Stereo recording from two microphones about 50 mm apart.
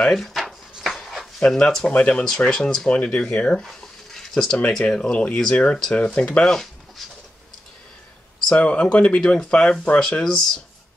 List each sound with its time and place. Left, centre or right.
0.0 s a sound: centre
1.9 s speech: left
2.2 s speech: centre
2.9 s speech: left
3.6 s a sound: centre
4.6 s speech: centre
7.0 s pigeon: centre
8.5 s speech: left